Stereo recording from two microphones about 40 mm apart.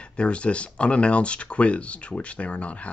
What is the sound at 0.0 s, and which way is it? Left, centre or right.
Speech, left.